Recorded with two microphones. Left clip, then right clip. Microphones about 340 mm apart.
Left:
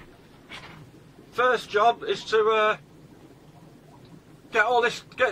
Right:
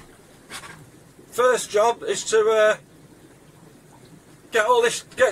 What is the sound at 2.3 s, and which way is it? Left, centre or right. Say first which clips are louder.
Speech: right 4 dB; right.